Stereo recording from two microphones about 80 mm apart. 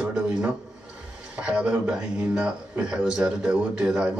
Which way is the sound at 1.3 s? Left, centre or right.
Centre.